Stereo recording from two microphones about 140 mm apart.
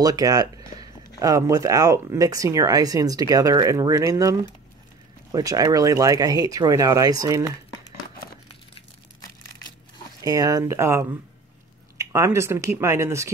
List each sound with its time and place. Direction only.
0.0 s speech: 25° right (ahead or behind)
10.2 s speech: 25° right (ahead or behind)